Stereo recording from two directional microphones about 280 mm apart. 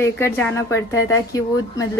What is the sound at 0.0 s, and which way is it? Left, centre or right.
Speech, centre.